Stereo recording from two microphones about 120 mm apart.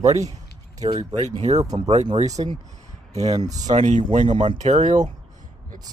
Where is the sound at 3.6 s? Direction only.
80° right.